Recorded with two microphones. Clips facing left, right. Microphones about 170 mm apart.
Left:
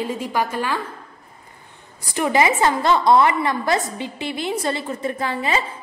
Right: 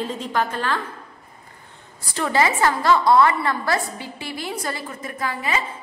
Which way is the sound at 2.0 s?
15° left (ahead or behind).